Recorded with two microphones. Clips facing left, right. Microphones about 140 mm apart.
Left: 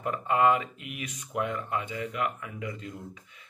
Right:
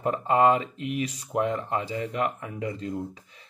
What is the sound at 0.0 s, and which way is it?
Speech, 30° right (ahead or behind).